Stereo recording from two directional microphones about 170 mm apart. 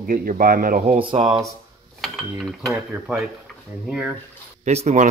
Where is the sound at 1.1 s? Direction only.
30° right (ahead or behind).